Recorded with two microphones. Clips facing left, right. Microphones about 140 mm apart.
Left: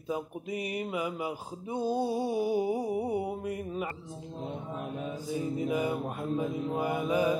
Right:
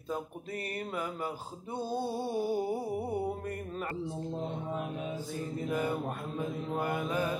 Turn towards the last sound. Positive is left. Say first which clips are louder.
# left 4 dB
turn(degrees=10)  # may be behind; listen again after turning